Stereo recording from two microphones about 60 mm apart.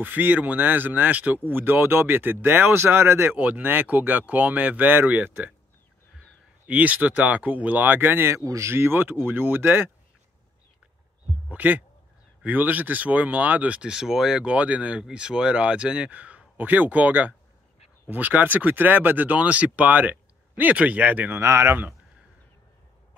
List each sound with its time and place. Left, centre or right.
0.0 s speech: right
3.3 s speech: right
6.7 s speech: right
8.5 s speech: right
11.5 s speech: right
13.8 s speech: centre
14.4 s speech: right
21.4 s speech: right